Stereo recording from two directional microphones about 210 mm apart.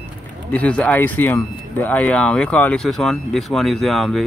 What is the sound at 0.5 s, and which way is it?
Speech, 5° left (ahead or behind).